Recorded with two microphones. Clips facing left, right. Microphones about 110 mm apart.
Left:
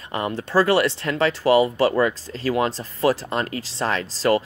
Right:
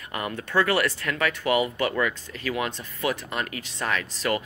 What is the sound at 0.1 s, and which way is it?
Speech, 25° left (ahead or behind).